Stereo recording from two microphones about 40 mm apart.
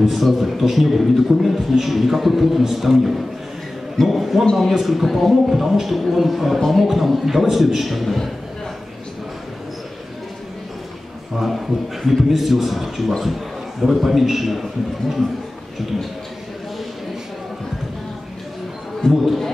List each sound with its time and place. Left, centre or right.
0.0 s a man's voice: centre
11.3 s a man's voice: centre
19.0 s a man's voice: centre